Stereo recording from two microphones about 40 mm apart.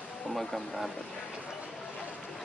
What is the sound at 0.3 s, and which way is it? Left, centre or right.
Speech, centre.